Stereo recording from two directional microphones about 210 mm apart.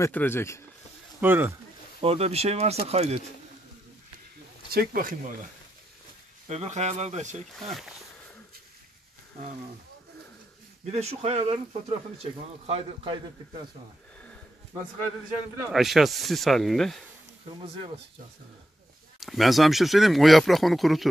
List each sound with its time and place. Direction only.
0.0 s speech: 10° left (ahead or behind)
1.2 s speech: 10° right (ahead or behind)
2.0 s speech: 30° right (ahead or behind)
4.7 s speech: 45° right (ahead or behind)
6.5 s speech: 35° right (ahead or behind)
7.5 s speech: centre (ahead or behind)
10.9 s speech: 30° right (ahead or behind)
15.7 s speech: centre (ahead or behind)
17.5 s speech: 25° right (ahead or behind)
19.1 s speech: centre (ahead or behind)